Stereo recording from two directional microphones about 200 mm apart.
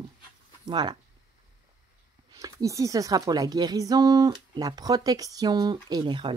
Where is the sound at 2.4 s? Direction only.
15° right (ahead or behind).